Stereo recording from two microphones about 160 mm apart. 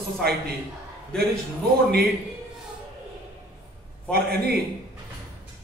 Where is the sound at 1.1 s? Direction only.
5° left (ahead or behind).